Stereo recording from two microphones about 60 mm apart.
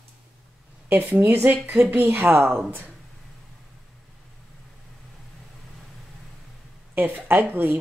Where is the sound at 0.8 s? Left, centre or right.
Right.